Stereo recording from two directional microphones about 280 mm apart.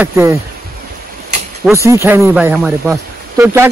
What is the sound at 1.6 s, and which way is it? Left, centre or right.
Speech, centre.